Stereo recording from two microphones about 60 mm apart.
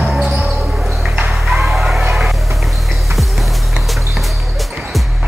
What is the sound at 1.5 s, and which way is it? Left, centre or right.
Music, centre.